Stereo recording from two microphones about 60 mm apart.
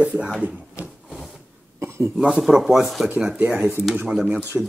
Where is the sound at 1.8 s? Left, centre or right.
Right.